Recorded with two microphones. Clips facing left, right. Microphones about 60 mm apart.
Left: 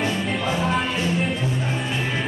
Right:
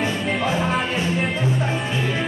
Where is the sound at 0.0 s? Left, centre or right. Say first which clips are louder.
Right 1 dB; centre.